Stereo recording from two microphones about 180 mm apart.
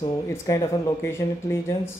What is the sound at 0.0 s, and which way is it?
Speech, 20° left (ahead or behind).